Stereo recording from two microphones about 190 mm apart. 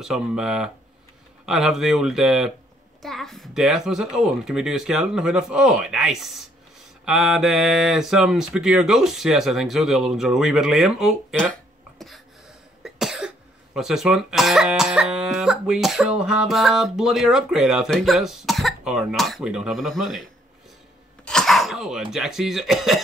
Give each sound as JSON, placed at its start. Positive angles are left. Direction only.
{"t": 0.0, "sound": "speech", "side_deg": -5}
{"t": 12.0, "sound": "a sound", "side_deg": 0}
{"t": 12.8, "sound": "cough", "side_deg": 0}
{"t": 13.7, "sound": "speech", "side_deg": 0}
{"t": 21.3, "sound": "cough", "side_deg": 0}
{"t": 22.1, "sound": "speech", "side_deg": 0}